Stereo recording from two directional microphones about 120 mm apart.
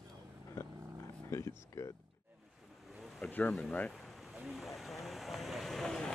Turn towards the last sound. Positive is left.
turn(degrees=5)  # may be behind; listen again after turning